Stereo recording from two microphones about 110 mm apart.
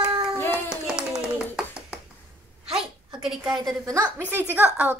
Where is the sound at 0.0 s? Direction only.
35° right (ahead or behind).